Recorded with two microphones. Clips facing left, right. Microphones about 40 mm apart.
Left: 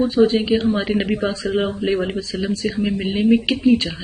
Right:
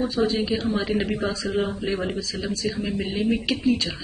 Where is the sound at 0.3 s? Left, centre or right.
Left.